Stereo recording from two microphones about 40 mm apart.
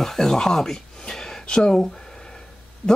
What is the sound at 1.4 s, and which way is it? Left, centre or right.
Speech, centre.